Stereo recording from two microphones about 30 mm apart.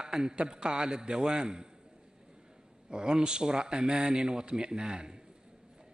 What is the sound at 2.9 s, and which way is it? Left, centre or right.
A man's voice, right.